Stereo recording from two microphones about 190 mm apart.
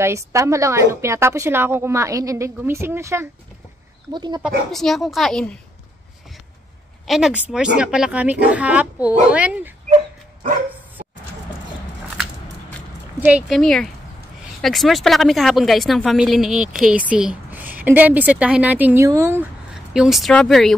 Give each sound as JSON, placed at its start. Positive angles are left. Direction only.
{"t": 0.0, "sound": "a woman's voice", "side_deg": -15}
{"t": 4.6, "sound": "a woman's voice", "side_deg": 0}
{"t": 7.1, "sound": "a woman's voice", "side_deg": 0}
{"t": 13.2, "sound": "a woman's voice", "side_deg": -5}
{"t": 19.7, "sound": "a woman's voice", "side_deg": -5}